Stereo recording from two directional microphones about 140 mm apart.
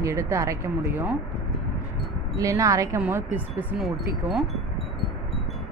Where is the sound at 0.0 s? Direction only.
20° right (ahead or behind).